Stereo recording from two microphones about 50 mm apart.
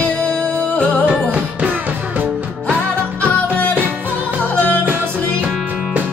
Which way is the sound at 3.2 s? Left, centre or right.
Left.